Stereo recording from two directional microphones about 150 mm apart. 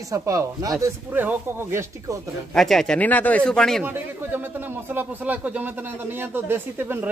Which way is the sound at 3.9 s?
15° right (ahead or behind).